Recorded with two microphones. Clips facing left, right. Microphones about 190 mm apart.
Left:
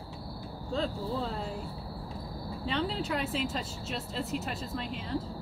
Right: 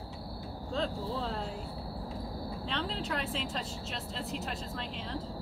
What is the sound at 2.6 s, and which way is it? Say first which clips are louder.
Speech: left 6 dB; 5° left (ahead or behind).